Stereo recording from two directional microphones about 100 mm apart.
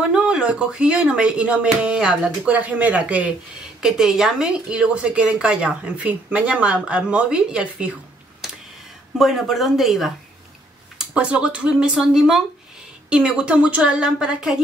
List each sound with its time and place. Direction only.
0.1 s a woman's voice: 10° right (ahead or behind)
9.2 s a woman's voice: centre (ahead or behind)